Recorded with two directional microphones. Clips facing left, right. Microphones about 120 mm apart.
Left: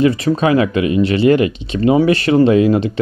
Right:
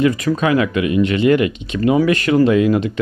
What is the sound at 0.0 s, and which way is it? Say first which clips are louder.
Speech: left 2 dB; 30° left (ahead or behind).